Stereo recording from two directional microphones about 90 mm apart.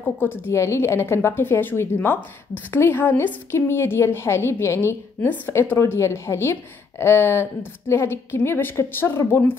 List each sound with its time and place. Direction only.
0.0 s a woman's voice: 25° left (ahead or behind)